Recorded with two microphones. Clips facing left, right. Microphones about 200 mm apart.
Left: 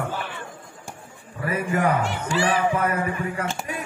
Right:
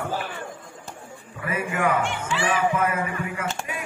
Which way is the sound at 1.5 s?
35° left (ahead or behind).